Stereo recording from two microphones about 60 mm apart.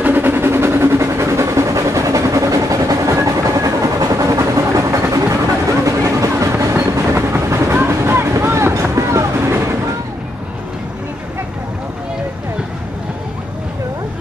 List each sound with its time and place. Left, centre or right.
0.0 s a sound: right
5.9 s music: right
6.6 s train: right
7.4 s vehicle: right